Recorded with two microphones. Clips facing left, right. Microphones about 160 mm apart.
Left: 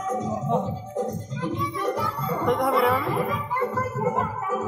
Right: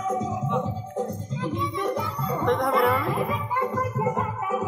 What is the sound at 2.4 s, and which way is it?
Music, 10° left (ahead or behind).